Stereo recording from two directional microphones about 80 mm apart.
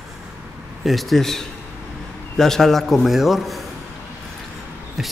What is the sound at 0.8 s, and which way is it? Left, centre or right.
A man's voice, centre.